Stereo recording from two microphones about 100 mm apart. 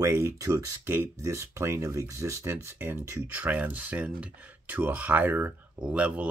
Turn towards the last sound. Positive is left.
turn(degrees=-15)  # may be behind; listen again after turning